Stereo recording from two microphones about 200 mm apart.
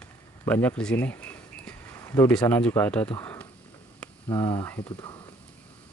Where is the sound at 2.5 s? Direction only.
10° left (ahead or behind).